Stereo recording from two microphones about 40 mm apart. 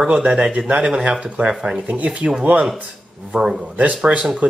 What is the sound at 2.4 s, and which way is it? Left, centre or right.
Speech, right.